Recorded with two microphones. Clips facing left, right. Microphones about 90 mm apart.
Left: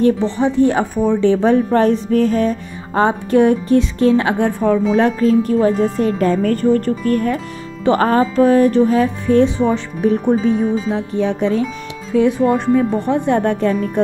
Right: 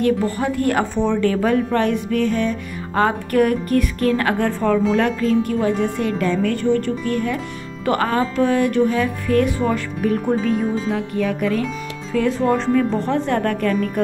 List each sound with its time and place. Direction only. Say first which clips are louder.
0.0 s speech: left 4 dB; 20° left (ahead or behind)
1.3 s speech: left 5 dB; 25° left (ahead or behind)
2.9 s speech: left 4 dB; 25° left (ahead or behind)
4.9 s speech: left 4 dB; 35° left (ahead or behind)
7.8 s speech: left 5 dB; 30° left (ahead or behind)
12.1 s speech: left 4 dB; 15° left (ahead or behind)